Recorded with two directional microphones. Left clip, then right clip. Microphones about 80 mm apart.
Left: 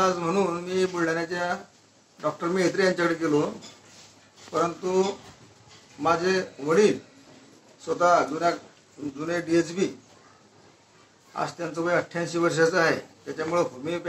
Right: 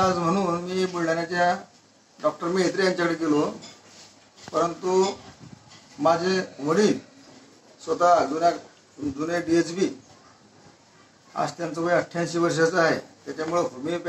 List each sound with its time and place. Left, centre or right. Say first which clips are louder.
0.0 s a man's voice: right 1 dB; right
11.3 s a man's voice: right 2 dB; right